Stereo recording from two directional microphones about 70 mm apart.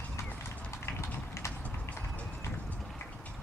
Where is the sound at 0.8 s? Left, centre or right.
Left.